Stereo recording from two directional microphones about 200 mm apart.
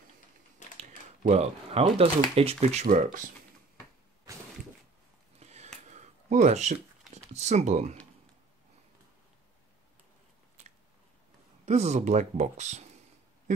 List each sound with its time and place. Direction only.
0.7 s typewriter: 35° right (ahead or behind)
2.3 s speech: 30° right (ahead or behind)
5.4 s a sound: 35° right (ahead or behind)
7.3 s speech: 35° right (ahead or behind)
11.6 s speech: 35° right (ahead or behind)